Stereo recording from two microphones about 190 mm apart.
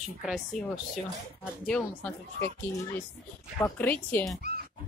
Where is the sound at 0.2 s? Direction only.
Centre (ahead or behind).